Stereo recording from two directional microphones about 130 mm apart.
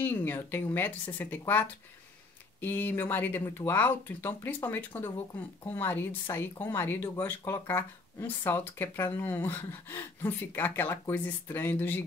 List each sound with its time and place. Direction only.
0.0 s speech: 15° left (ahead or behind)